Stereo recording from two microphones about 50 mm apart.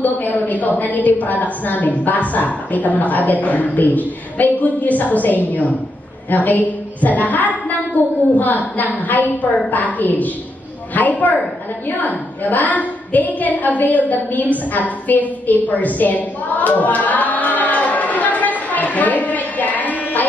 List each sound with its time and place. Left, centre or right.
0.0 s a woman's voice: left